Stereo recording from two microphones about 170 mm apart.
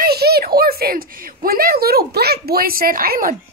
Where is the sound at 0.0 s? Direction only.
70° right (ahead or behind).